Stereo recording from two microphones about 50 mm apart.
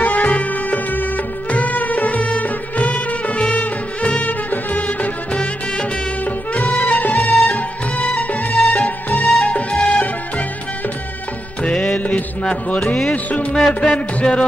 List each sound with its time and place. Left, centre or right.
0.0 s music: left
12.8 s music: left